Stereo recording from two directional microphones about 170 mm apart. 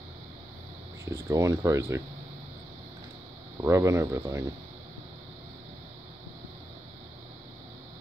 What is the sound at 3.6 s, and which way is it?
Speech, 15° right (ahead or behind).